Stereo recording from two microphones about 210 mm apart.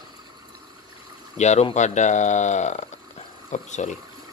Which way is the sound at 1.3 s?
35° left (ahead or behind).